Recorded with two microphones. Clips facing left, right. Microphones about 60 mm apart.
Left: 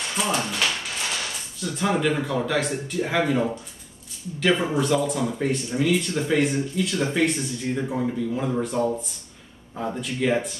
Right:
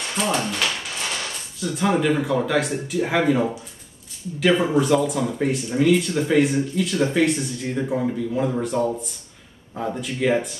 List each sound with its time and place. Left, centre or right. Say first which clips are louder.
0.2 s speech: right 2 dB; centre